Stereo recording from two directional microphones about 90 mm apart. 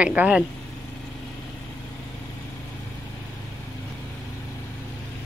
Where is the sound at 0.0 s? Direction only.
15° right (ahead or behind).